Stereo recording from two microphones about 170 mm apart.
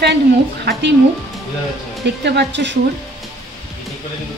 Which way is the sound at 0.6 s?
80° right.